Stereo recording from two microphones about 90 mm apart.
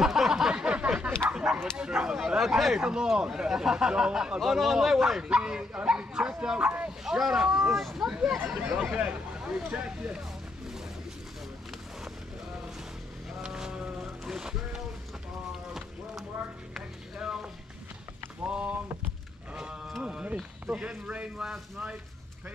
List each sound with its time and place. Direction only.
0.0 s a sound: 5° right (ahead or behind)
1.3 s bow-wow: 10° right (ahead or behind)
1.8 s speech: 10° right (ahead or behind)
13.4 s boat: 5° right (ahead or behind)
16.7 s a sound: 5° right (ahead or behind)
20.0 s speech: 10° right (ahead or behind)